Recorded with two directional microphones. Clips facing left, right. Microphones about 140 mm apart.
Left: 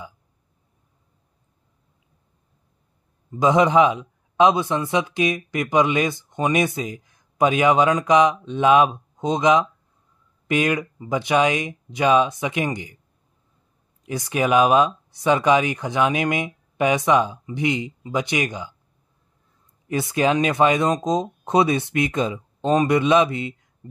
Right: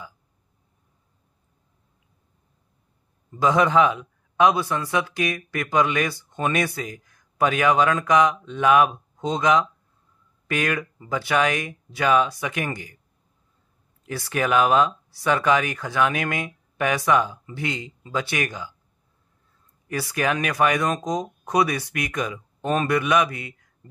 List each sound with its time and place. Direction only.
3.3 s a man's voice: 20° left (ahead or behind)
14.0 s a man's voice: 15° left (ahead or behind)
19.9 s a man's voice: 20° left (ahead or behind)